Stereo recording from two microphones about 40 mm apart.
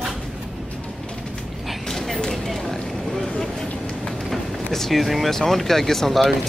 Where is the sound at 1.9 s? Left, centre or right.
Centre.